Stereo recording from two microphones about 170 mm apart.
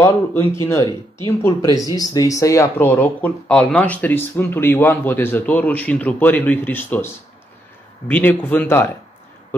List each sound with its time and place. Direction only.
0.0 s speech: 15° left (ahead or behind)
8.1 s speech: 10° left (ahead or behind)